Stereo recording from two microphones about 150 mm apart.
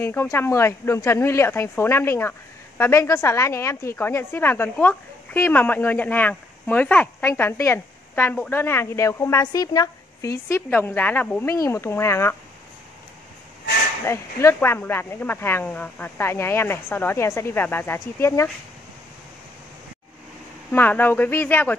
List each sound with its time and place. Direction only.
0.0 s speech: 15° left (ahead or behind)
14.0 s speech: 15° left (ahead or behind)
20.7 s speech: 10° left (ahead or behind)